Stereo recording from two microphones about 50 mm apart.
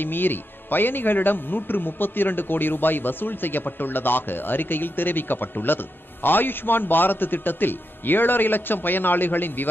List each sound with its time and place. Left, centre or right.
0.0 s a man's voice: left